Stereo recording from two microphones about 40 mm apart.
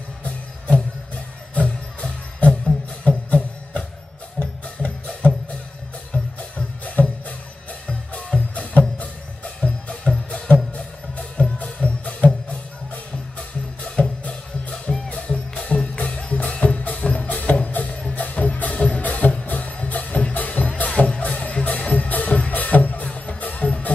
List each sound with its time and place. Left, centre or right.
0.2 s music: left
6.1 s music: left
13.4 s music: left